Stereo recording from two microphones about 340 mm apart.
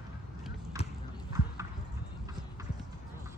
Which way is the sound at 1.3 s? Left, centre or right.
Centre.